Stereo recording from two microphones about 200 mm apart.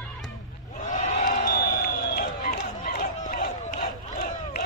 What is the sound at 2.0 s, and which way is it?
Run, 50° left (ahead or behind).